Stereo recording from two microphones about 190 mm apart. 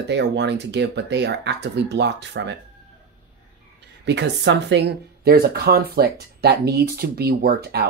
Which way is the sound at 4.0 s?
65° right (ahead or behind).